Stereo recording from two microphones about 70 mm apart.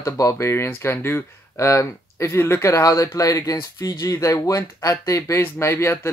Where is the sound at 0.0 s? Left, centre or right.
Left.